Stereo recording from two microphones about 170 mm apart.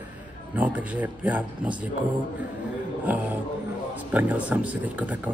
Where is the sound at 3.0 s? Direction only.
10° right (ahead or behind).